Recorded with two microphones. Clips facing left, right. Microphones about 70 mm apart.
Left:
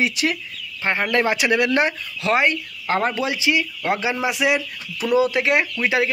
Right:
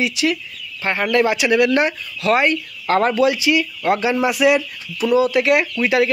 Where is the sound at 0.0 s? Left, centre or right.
Left; by 3.2 s centre.